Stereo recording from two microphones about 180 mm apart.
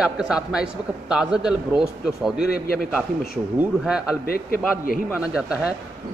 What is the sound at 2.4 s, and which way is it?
Speech, 60° left (ahead or behind).